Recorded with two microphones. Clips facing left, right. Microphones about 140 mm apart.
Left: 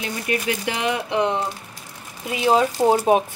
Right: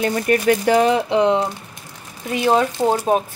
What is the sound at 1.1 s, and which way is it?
Speech, 20° right (ahead or behind).